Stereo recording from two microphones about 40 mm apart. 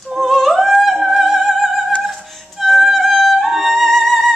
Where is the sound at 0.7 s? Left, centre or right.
Centre.